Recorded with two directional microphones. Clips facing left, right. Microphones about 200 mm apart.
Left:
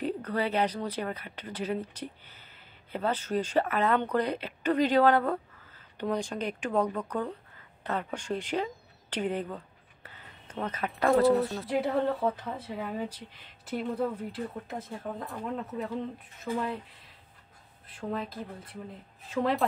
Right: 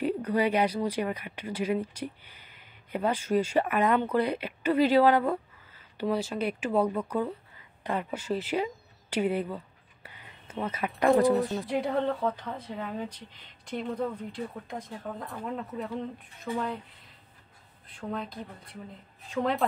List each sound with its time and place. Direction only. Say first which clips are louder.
0.0 s speech: right 4 dB; 10° right (ahead or behind)
10.0 s a sound: right 1 dB; 10° right (ahead or behind)
11.1 s speech: right 1 dB; 15° right (ahead or behind)
11.4 s speech: even; centre (ahead or behind)
17.8 s speech: left 1 dB; centre (ahead or behind)